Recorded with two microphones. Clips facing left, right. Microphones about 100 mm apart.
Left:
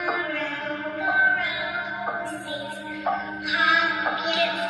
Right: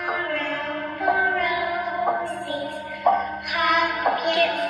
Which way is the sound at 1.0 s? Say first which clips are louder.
Right 2 dB; 55° right (ahead or behind).